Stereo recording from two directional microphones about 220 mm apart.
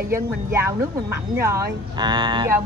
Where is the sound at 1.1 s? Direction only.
15° right (ahead or behind).